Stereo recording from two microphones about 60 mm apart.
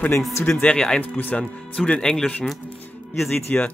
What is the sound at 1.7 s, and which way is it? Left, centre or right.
Speech, centre.